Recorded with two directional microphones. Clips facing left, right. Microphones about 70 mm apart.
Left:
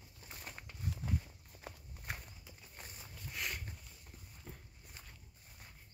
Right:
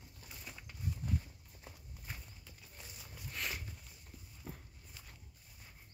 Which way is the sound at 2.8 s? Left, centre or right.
Left.